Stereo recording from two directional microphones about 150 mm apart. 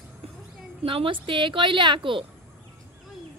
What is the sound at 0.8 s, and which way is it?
A woman's voice, 35° right (ahead or behind).